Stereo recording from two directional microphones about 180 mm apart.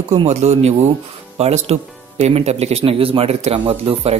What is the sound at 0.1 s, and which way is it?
Speech, 35° right (ahead or behind).